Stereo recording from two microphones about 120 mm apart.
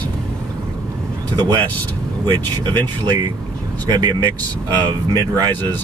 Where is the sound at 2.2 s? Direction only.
35° right (ahead or behind).